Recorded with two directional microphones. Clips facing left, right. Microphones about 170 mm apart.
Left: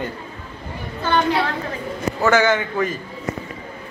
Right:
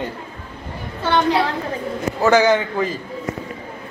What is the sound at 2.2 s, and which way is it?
Speech, 15° right (ahead or behind).